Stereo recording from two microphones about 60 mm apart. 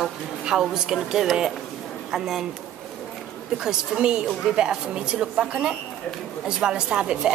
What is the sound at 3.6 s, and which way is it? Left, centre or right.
A woman's voice, centre.